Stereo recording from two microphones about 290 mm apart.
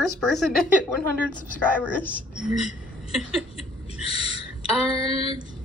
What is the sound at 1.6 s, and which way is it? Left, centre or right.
A woman's voice, centre.